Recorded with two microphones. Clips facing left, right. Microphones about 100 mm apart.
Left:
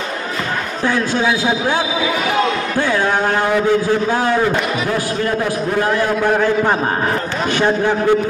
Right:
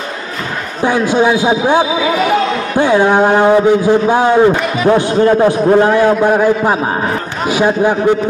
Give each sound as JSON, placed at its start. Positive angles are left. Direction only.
{"t": 0.8, "sound": "a man's voice", "side_deg": -15}
{"t": 2.8, "sound": "a sound", "side_deg": -20}
{"t": 4.8, "sound": "a man's voice", "side_deg": -30}
{"t": 5.9, "sound": "a man's voice", "side_deg": -20}